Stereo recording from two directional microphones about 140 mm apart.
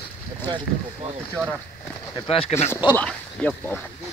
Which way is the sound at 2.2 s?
45° left (ahead or behind).